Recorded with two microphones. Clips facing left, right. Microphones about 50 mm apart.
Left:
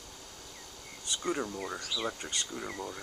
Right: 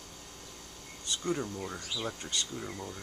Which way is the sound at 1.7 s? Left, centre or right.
Left.